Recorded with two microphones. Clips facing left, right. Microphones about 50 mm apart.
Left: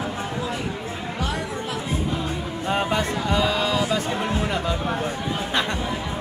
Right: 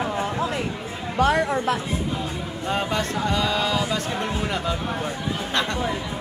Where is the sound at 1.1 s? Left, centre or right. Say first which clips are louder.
Right 10 dB; right.